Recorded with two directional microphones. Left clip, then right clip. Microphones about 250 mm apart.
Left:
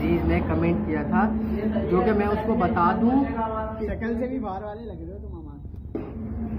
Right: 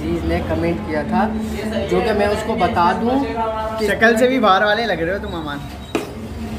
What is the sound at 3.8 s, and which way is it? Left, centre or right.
Speech, right.